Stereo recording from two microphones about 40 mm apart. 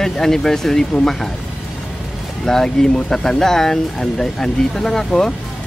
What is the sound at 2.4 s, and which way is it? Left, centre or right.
Speech, centre.